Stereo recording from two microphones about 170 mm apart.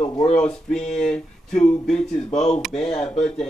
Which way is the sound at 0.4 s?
5° left (ahead or behind).